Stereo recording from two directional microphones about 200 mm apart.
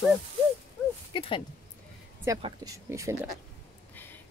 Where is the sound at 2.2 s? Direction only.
20° right (ahead or behind).